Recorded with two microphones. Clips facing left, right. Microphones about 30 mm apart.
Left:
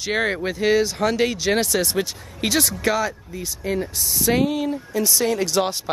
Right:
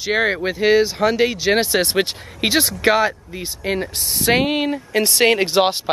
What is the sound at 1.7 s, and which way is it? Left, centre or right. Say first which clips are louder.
Speech: right 4 dB; right.